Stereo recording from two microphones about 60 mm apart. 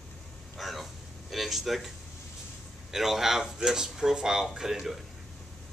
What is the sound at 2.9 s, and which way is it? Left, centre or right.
A man's voice, centre.